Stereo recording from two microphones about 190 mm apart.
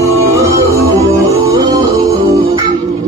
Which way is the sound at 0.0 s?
15° right (ahead or behind).